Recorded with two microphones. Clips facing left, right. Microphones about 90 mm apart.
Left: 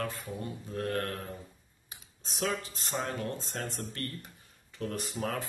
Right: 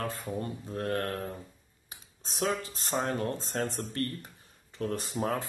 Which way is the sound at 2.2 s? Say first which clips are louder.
Right 2 dB; 35° right (ahead or behind).